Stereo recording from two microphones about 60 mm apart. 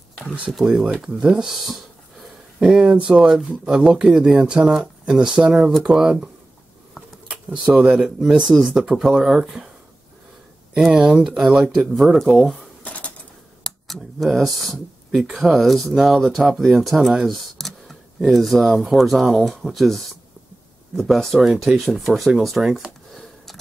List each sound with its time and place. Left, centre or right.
0.7 s speech: centre
2.6 s speech: centre
5.1 s speech: centre
5.7 s speech: centre
5.9 s speech: centre
7.6 s speech: centre
10.9 s speech: centre
12.8 s a sound: left
13.7 s speech: centre
22.6 s speech: centre
23.1 s a sound: centre